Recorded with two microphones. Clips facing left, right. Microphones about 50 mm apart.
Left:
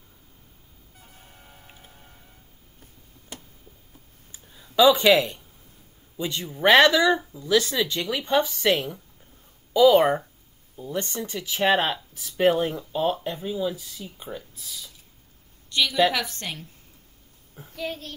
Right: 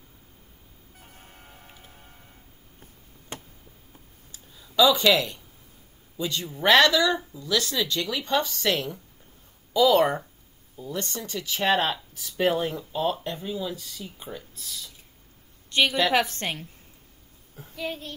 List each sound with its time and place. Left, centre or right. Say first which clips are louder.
0.9 s vehicle: right 1 dB; right
1.9 s music: right 1 dB; right
2.8 s a sound: even; right
4.3 s a sound: left 1 dB; left
6.1 s a man's voice: even; left; by 14.9 s centre
15.7 s a woman's voice: even; right
17.6 s a child's voice: left 1 dB; centre